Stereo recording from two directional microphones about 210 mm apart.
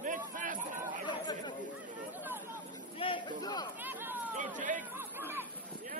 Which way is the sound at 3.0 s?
20° left (ahead or behind).